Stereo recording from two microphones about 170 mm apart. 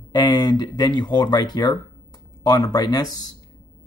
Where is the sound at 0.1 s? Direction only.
25° left (ahead or behind).